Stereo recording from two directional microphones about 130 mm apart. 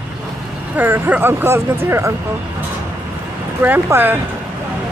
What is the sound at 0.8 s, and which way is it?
Speech, 15° right (ahead or behind).